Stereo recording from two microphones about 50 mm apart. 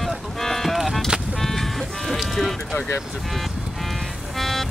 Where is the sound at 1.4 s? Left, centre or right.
Centre.